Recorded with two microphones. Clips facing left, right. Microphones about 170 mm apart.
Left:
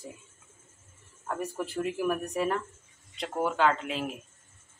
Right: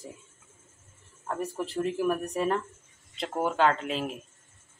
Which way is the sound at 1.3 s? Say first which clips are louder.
Right 1 dB; 5° left (ahead or behind).